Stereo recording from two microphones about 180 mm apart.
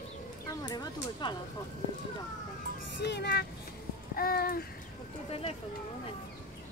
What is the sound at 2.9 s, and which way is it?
Speech, 70° left (ahead or behind).